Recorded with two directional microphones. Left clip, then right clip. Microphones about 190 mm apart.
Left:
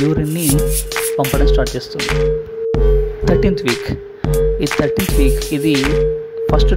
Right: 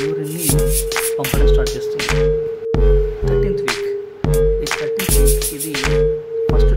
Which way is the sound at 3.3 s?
35° left (ahead or behind).